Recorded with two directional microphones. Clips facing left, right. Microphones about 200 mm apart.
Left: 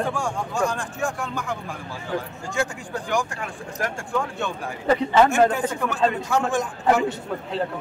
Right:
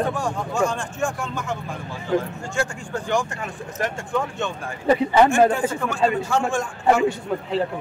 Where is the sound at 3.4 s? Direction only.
Centre (ahead or behind).